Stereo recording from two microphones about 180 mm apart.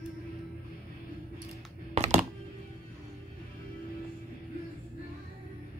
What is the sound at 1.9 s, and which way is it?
Music, 40° right (ahead or behind).